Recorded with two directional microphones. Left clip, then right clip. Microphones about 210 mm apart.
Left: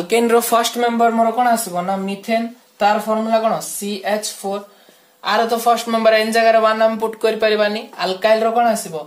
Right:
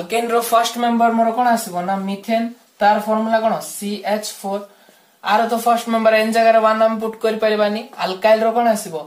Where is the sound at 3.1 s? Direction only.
40° left (ahead or behind).